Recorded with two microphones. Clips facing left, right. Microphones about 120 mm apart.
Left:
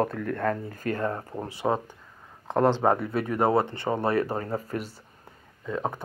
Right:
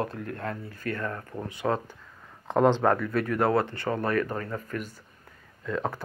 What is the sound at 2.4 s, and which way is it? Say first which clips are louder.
Speech: even; 5° left (ahead or behind).